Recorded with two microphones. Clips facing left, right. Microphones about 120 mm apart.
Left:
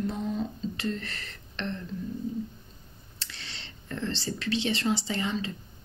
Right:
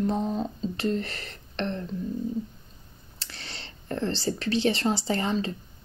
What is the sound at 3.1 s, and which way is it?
Speech, 40° right (ahead or behind).